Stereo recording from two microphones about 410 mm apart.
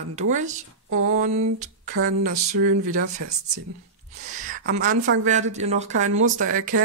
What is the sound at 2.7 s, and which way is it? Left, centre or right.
Speech, centre.